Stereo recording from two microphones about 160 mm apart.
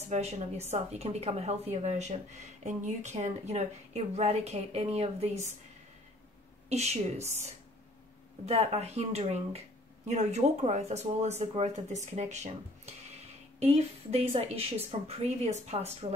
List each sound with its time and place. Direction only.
0.1 s a woman's voice: 45° right (ahead or behind)
6.7 s a woman's voice: 45° right (ahead or behind)